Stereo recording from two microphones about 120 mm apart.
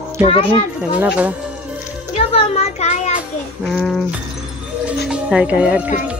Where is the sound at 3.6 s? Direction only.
5° left (ahead or behind).